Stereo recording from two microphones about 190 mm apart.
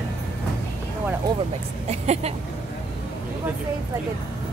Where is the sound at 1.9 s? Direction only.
35° right (ahead or behind).